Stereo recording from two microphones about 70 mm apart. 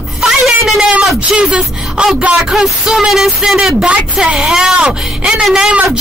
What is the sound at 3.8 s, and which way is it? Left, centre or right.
Speech, centre.